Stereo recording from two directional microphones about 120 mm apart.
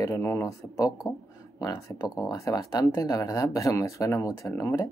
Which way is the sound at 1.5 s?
30° left (ahead or behind).